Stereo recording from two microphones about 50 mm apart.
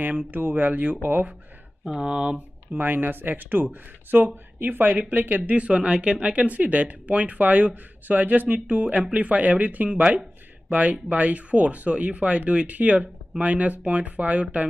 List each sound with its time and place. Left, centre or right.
0.0 s speech: right
2.0 s speech: centre
2.8 s speech: right